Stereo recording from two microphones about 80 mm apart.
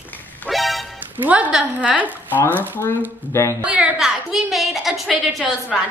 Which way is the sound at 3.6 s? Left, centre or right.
Centre.